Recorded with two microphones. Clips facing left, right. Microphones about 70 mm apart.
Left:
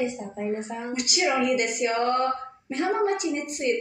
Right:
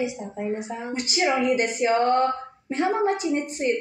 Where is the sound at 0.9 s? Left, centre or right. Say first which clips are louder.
Right 1 dB; right.